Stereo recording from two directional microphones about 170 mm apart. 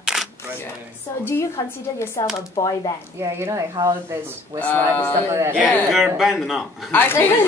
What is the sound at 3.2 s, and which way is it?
Speech, 15° right (ahead or behind).